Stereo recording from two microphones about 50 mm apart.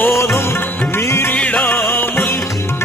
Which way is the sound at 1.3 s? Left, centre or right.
Left.